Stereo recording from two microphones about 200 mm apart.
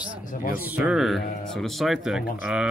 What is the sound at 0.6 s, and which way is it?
Speech, 10° right (ahead or behind).